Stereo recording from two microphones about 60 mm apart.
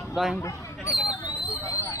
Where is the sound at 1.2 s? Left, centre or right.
Left.